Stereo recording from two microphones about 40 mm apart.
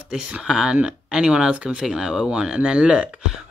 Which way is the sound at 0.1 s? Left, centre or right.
Centre.